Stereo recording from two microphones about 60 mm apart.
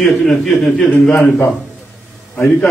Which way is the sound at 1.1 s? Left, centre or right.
Centre.